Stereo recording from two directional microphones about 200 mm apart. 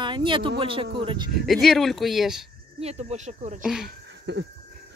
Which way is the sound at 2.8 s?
35° right (ahead or behind).